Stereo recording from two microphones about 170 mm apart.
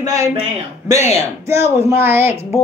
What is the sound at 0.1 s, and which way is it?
Speech, 20° right (ahead or behind).